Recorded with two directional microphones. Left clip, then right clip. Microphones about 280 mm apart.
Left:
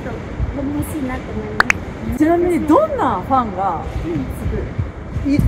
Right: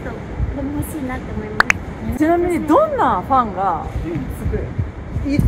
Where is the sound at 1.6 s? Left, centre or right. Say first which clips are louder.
Even; centre.